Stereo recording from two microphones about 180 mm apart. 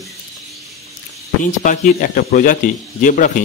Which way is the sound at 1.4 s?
45° left (ahead or behind).